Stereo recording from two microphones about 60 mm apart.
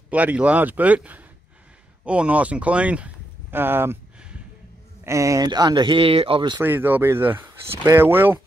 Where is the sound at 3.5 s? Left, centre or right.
Right.